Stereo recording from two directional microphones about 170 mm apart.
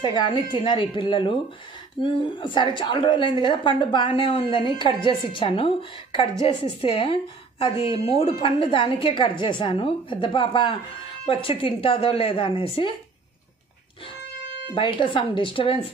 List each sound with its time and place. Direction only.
0.0 s a woman's voice: 25° left (ahead or behind)
14.7 s a woman's voice: 30° left (ahead or behind)